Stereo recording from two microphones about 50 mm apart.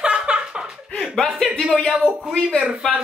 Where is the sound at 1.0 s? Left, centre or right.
Centre.